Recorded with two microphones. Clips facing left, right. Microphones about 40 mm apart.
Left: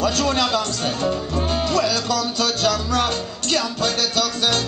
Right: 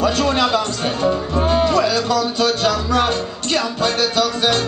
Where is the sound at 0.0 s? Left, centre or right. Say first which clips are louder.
Right 3 dB; right.